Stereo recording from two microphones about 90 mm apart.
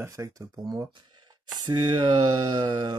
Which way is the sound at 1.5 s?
60° right (ahead or behind).